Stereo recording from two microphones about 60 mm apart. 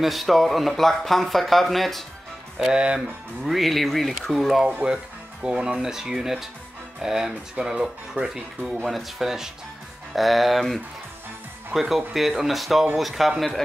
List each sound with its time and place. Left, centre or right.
0.0 s speech: centre
2.6 s speech: centre
3.4 s speech: centre
4.8 s speech: centre